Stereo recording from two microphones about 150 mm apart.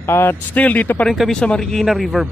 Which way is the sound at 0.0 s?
15° left (ahead or behind).